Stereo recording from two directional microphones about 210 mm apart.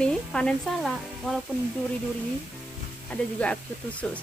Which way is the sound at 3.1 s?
5° left (ahead or behind).